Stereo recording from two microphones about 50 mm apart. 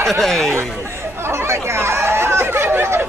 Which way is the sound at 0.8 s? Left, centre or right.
Right.